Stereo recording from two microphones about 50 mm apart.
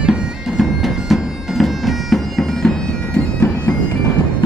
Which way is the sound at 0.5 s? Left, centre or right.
Centre.